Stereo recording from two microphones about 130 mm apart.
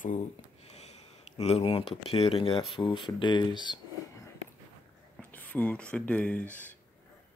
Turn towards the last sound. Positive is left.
turn(degrees=10)  # may be behind; listen again after turning